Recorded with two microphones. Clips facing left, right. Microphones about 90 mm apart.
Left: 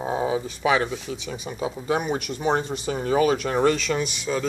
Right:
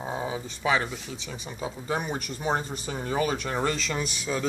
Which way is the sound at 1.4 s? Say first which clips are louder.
Left 6 dB; 15° left (ahead or behind).